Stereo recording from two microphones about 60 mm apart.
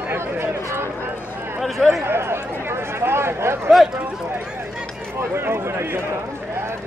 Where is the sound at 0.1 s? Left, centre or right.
Right.